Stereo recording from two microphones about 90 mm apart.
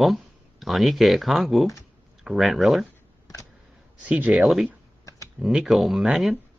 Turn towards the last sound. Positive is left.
turn(degrees=-5)  # may be behind; listen again after turning